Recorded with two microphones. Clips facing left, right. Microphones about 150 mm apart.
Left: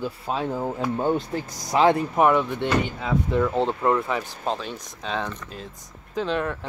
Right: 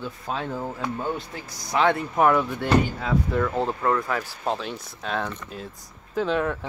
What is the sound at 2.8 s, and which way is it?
Speech, centre (ahead or behind).